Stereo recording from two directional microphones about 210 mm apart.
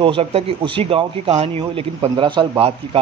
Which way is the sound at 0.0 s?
25° right (ahead or behind).